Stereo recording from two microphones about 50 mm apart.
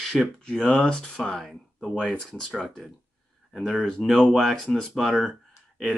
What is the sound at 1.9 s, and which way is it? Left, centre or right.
Speech, centre.